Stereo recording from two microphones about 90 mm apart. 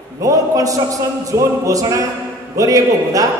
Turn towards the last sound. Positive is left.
turn(degrees=-40)  # may be behind; listen again after turning